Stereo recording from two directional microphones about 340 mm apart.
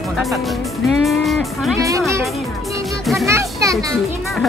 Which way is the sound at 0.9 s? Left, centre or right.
Centre.